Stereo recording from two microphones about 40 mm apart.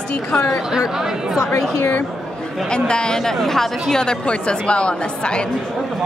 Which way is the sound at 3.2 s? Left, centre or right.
Centre.